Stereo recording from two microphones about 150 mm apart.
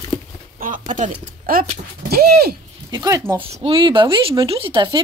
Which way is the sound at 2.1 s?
90° right.